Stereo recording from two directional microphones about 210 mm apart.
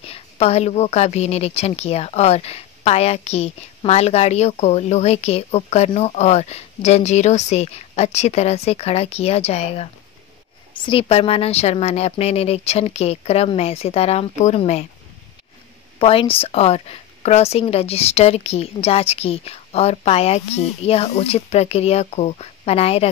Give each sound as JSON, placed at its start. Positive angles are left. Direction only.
{"t": 0.0, "sound": "a woman's voice", "side_deg": 30}
{"t": 16.0, "sound": "a woman's voice", "side_deg": 25}